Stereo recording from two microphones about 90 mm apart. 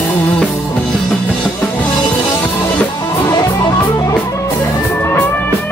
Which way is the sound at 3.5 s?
50° left (ahead or behind).